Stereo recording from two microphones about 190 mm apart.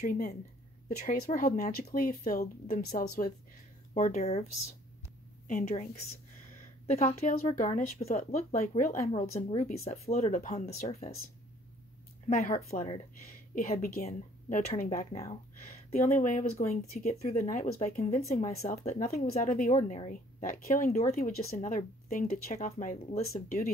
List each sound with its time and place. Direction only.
0.0 s speech: 50° left (ahead or behind)
3.9 s speech: 35° left (ahead or behind)
5.5 s speech: 45° left (ahead or behind)
6.9 s speech: 35° left (ahead or behind)
12.6 s speech: 45° left (ahead or behind)